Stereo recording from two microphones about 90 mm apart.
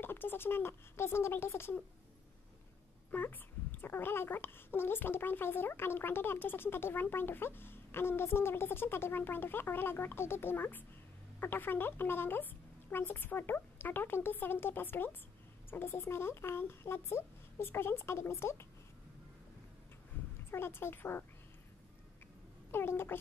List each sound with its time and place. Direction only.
0.0 s speech: 25° left (ahead or behind)
3.1 s speech: 20° left (ahead or behind)
20.1 s a sound: 20° left (ahead or behind)
20.5 s speech: 25° left (ahead or behind)
22.7 s speech: 25° left (ahead or behind)